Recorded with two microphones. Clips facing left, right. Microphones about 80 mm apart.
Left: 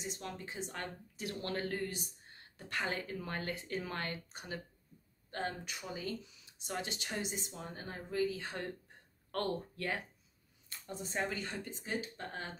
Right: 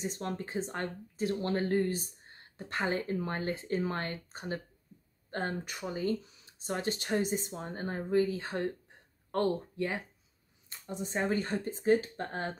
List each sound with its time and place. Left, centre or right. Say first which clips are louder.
0.0 s speech: right 7 dB; right
9.3 s speech: right 6 dB; centre
11.2 s speech: right 9 dB; right